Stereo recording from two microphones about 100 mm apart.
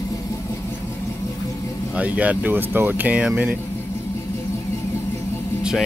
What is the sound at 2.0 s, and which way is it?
Speech, 15° right (ahead or behind).